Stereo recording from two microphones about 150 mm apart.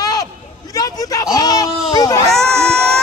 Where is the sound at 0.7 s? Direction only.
25° left (ahead or behind).